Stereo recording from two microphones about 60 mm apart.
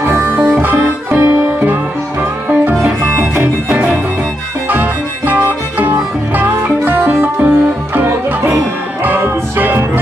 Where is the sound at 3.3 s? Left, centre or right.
Right.